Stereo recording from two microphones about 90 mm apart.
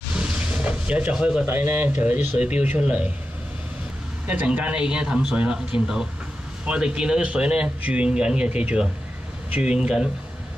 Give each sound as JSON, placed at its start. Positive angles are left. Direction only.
{"t": 0.1, "sound": "vehicle", "side_deg": -10}
{"t": 1.4, "sound": "a man's voice", "side_deg": -20}
{"t": 4.3, "sound": "a man's voice", "side_deg": -15}